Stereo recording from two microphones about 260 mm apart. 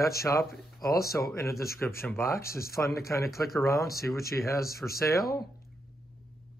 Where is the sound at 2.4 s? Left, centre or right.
Left.